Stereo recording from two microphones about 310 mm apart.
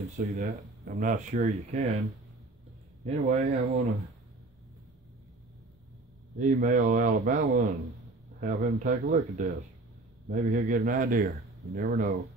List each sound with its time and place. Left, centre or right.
0.4 s speech: right
3.1 s speech: right
6.3 s speech: right